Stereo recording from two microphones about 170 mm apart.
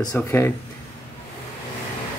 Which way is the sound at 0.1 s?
15° left (ahead or behind).